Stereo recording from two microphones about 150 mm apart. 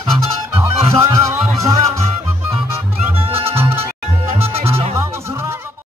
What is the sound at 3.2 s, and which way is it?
Music, 40° right (ahead or behind).